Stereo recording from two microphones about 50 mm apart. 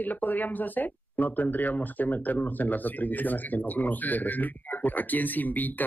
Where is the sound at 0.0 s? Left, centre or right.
Left.